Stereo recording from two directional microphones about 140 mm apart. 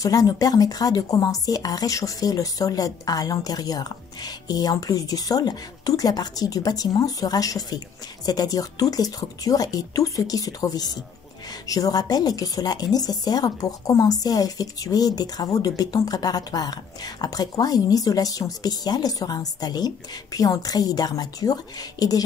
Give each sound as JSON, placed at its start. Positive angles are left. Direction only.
{"t": 0.0, "sound": "speech", "side_deg": 25}